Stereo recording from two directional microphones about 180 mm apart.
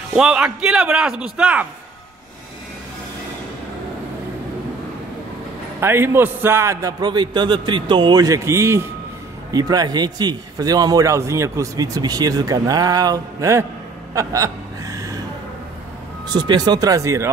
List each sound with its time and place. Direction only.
0.1 s speech: 5° right (ahead or behind)
5.8 s a man's voice: 15° right (ahead or behind)
14.1 s gasp: 20° right (ahead or behind)
16.3 s a man's voice: 25° right (ahead or behind)